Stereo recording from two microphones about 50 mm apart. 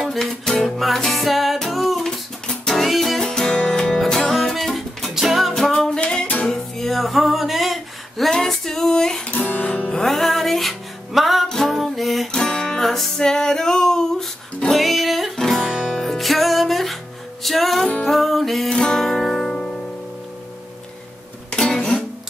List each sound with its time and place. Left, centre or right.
0.0 s music: centre
2.0 s music: centre
5.5 s music: centre
6.2 s music: left
6.5 s a sound: centre
9.3 s music: left
9.9 s music: centre
12.3 s music: centre
18.7 s music: centre
21.5 s music: centre